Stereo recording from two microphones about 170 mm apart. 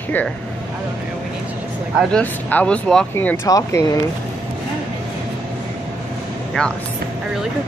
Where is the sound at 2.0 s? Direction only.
5° left (ahead or behind).